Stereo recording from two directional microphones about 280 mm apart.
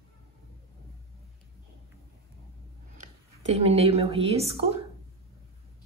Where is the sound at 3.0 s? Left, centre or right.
Right.